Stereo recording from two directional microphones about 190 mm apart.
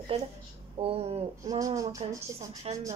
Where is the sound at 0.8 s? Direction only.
30° right (ahead or behind).